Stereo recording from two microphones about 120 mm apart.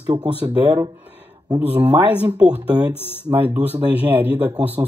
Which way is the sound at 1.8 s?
15° right (ahead or behind).